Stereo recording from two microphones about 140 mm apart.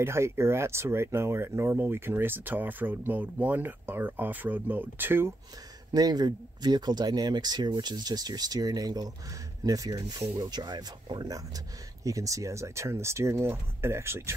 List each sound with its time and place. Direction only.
0.0 s speech: 20° right (ahead or behind)
5.9 s speech: 30° right (ahead or behind)